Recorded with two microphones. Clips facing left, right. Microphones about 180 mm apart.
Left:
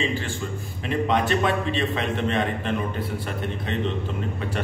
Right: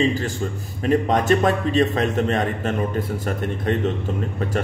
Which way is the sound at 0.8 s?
45° right (ahead or behind).